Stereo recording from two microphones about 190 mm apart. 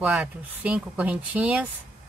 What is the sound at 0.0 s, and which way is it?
Speech, 5° right (ahead or behind).